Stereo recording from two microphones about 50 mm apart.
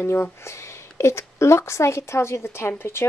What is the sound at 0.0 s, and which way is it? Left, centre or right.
A woman's voice, left.